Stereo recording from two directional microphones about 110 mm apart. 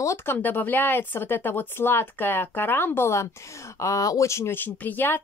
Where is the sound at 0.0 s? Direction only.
20° left (ahead or behind).